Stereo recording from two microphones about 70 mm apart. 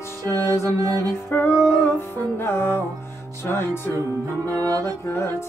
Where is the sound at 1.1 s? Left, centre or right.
Left.